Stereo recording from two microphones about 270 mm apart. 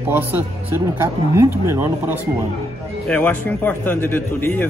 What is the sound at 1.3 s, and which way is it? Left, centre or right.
Speech, centre.